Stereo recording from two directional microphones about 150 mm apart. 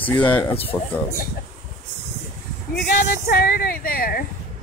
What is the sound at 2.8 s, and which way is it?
Speech, 80° left.